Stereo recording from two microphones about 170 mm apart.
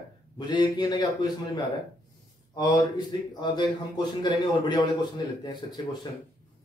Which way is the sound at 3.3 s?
25° left (ahead or behind).